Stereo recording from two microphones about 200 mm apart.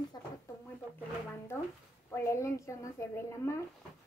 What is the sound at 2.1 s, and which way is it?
A woman's voice, 15° left (ahead or behind).